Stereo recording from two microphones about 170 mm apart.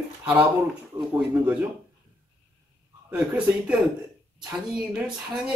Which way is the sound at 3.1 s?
10° right (ahead or behind).